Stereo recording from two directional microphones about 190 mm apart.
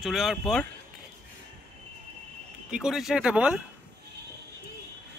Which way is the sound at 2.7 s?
5° right (ahead or behind).